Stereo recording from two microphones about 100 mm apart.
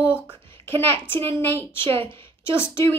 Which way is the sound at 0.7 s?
20° left (ahead or behind).